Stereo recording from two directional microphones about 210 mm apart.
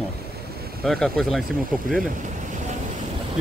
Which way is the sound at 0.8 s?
Centre (ahead or behind).